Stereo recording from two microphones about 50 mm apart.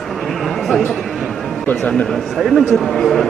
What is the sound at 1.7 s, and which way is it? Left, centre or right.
Speech, left.